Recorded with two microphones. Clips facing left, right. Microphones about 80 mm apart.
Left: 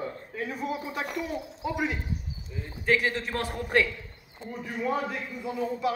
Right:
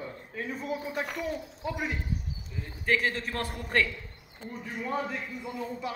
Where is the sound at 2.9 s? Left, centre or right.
Centre.